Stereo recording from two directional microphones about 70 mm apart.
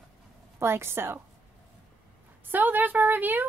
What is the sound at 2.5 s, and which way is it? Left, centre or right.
Speech, right.